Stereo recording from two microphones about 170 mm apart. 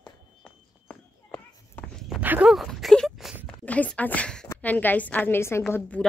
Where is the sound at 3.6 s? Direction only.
10° left (ahead or behind).